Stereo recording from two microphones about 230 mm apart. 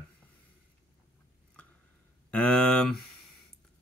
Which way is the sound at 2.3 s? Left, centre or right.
Centre.